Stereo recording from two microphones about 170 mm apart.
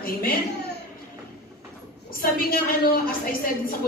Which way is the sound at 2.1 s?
60° left (ahead or behind).